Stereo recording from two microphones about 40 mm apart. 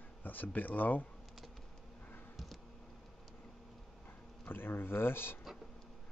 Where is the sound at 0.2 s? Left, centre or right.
Left.